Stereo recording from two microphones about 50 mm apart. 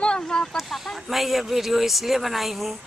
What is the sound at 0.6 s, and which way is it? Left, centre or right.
Speech, centre.